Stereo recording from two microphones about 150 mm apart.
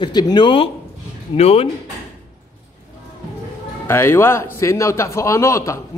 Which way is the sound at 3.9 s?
15° left (ahead or behind).